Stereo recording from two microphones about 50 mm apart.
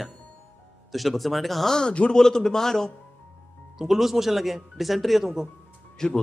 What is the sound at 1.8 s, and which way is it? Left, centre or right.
Speech, centre.